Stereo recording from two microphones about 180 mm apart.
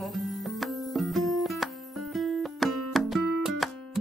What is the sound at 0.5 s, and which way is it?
Music, centre (ahead or behind).